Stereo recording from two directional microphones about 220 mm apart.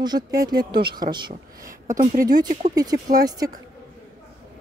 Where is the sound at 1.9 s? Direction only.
35° right (ahead or behind).